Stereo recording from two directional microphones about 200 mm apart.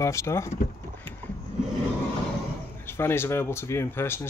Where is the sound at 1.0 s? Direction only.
10° left (ahead or behind).